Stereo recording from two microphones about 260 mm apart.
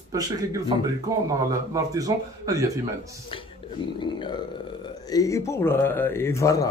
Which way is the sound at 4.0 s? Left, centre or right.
Centre.